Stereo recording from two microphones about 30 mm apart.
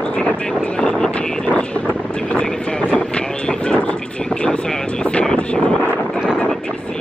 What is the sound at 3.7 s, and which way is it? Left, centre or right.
Vehicle, left.